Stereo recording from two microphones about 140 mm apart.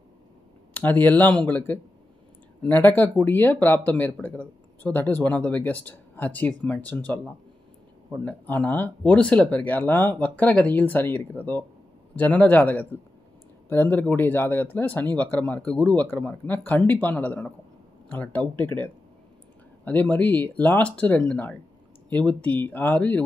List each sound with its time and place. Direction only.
0.7 s speech: 10° left (ahead or behind)